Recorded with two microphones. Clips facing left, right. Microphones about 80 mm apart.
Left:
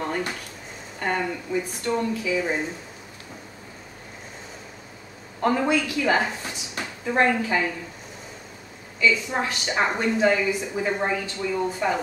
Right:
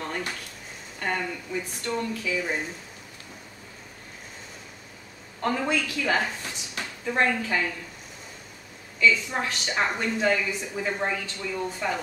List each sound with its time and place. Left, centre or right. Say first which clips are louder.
0.0 s drawer open or close: left 4 dB; centre
0.9 s speech: left 3 dB; centre
5.4 s a woman's voice: left 4 dB; centre
9.0 s a woman's voice: left 1 dB; centre